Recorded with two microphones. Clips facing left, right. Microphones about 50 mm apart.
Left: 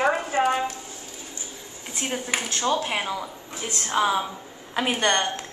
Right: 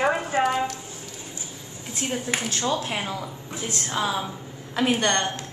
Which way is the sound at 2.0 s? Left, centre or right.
Centre.